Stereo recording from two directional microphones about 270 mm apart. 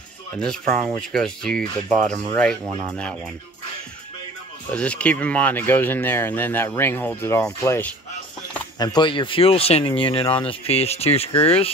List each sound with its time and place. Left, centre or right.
0.4 s speech: centre
4.7 s speech: centre; by 11.7 s left